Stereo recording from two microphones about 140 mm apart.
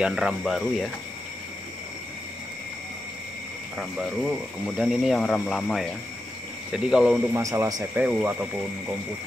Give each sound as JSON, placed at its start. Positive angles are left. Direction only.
{"t": 0.0, "sound": "speech", "side_deg": -5}
{"t": 3.7, "sound": "speech", "side_deg": 0}
{"t": 7.3, "sound": "speech", "side_deg": -20}
{"t": 7.9, "sound": "speech", "side_deg": -10}